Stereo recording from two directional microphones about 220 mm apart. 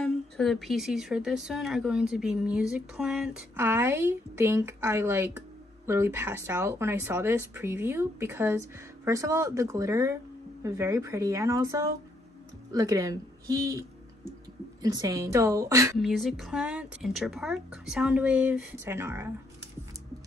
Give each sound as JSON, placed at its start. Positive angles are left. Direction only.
{"t": 0.0, "sound": "a woman's voice", "side_deg": 0}
{"t": 16.0, "sound": "a woman's voice", "side_deg": 0}